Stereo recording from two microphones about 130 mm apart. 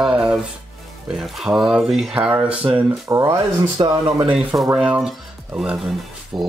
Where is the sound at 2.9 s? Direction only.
25° right (ahead or behind).